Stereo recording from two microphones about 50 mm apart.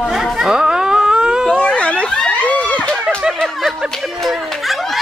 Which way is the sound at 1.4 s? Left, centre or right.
Centre.